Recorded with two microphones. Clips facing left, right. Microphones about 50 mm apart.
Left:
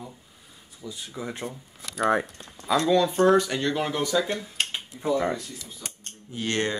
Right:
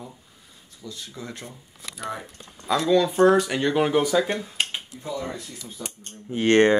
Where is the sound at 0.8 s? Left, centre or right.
Centre.